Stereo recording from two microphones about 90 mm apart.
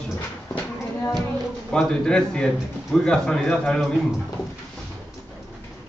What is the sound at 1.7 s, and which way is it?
A man's voice, 10° left (ahead or behind).